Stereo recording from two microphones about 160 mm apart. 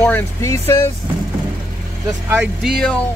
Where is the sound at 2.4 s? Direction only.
Centre (ahead or behind).